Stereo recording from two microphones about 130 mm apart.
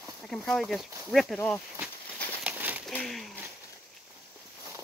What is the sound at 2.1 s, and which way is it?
Bird, 15° left (ahead or behind).